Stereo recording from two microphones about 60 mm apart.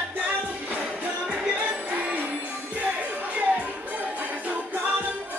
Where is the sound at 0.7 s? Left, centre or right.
Right.